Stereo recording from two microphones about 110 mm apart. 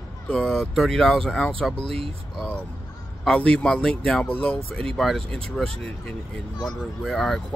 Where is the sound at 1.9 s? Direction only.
60° right (ahead or behind).